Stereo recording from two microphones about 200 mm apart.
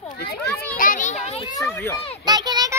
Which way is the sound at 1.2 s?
30° left (ahead or behind).